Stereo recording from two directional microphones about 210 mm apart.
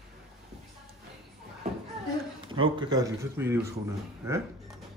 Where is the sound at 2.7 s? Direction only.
20° right (ahead or behind).